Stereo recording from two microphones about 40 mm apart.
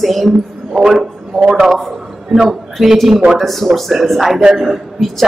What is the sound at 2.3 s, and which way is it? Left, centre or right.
A man's voice, centre.